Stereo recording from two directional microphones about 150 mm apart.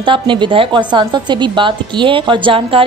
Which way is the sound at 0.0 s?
35° right (ahead or behind).